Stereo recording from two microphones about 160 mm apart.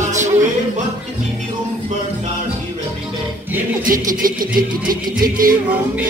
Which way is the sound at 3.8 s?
60° right (ahead or behind).